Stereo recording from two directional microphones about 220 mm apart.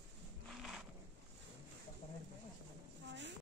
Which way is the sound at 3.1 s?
55° right (ahead or behind).